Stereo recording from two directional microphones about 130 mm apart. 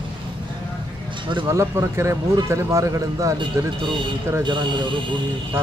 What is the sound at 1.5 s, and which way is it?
Speech, 20° right (ahead or behind).